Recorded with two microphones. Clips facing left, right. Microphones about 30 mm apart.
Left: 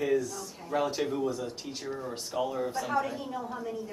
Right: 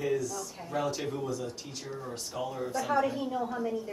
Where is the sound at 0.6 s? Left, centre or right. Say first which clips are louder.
Left 3 dB; centre.